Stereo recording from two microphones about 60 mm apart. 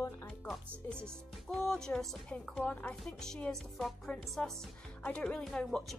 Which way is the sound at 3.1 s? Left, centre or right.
Centre.